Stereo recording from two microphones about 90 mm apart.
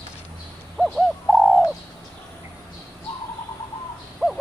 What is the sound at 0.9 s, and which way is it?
Bird, centre (ahead or behind).